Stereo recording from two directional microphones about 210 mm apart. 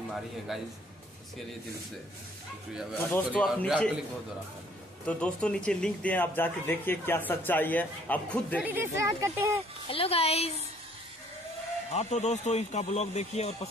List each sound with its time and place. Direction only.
0.5 s a man's voice: centre (ahead or behind)
3.3 s a man's voice: centre (ahead or behind)
5.0 s speech: 5° left (ahead or behind)
8.5 s speech: 10° right (ahead or behind)
9.8 s speech: 25° left (ahead or behind)
11.9 s speech: 30° left (ahead or behind)